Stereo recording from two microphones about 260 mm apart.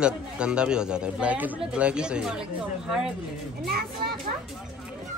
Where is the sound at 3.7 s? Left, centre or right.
Right.